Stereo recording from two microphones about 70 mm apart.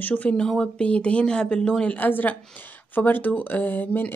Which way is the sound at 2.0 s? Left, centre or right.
Left.